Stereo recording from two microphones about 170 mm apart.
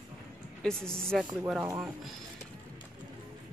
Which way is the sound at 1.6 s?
15° right (ahead or behind).